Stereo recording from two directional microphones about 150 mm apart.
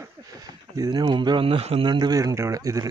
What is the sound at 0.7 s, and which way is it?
Speech, 25° right (ahead or behind).